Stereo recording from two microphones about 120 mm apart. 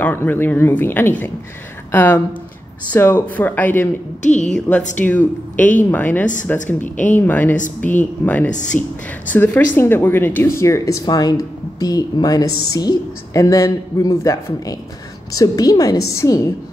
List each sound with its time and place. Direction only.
0.0 s a woman's voice: 15° left (ahead or behind)
4.2 s a woman's voice: 80° left
4.5 s a woman's voice: 5° left (ahead or behind); by 16.5 s 25° left (ahead or behind)